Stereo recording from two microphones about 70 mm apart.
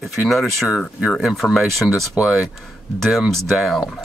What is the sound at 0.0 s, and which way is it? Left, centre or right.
Speech, centre.